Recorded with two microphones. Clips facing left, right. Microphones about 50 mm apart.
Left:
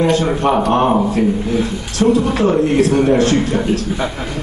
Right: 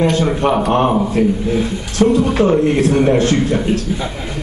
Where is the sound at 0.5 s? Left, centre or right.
Centre.